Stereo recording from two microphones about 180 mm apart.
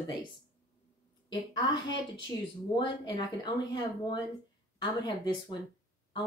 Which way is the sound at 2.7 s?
25° left (ahead or behind).